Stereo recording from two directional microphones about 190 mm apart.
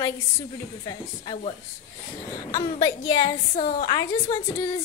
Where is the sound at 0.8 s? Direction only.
25° left (ahead or behind).